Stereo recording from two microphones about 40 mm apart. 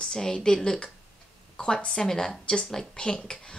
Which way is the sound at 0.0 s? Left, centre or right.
Centre.